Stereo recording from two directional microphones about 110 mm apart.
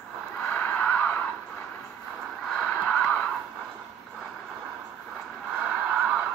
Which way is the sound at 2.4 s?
5° left (ahead or behind).